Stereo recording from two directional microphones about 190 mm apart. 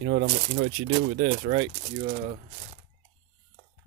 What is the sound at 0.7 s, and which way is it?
Speech, 40° right (ahead or behind).